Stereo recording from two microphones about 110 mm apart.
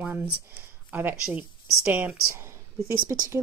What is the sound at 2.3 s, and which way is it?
Speech, 25° right (ahead or behind).